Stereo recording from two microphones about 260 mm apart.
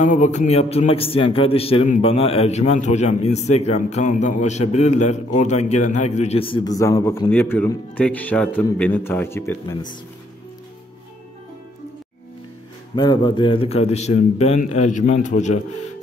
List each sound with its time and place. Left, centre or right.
0.0 s a man's voice: left; by 9.8 s centre
12.9 s a man's voice: centre